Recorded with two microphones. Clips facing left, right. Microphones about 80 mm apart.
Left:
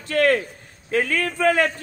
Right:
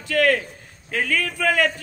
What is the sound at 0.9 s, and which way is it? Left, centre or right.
Speech, left.